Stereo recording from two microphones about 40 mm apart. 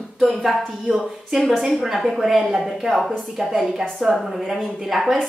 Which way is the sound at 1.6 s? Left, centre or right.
Centre.